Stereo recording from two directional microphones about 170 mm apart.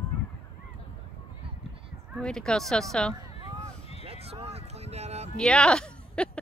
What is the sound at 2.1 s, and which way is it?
Speech, 5° left (ahead or behind).